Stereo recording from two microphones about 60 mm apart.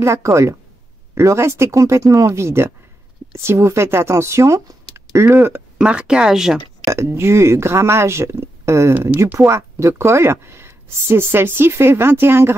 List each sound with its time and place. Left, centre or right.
0.0 s speech: right
2.4 s speech: right
5.1 s speech: right
5.8 s speech: centre
6.9 s speech: right